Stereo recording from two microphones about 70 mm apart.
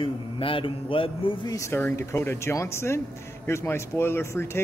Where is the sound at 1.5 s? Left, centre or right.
Left.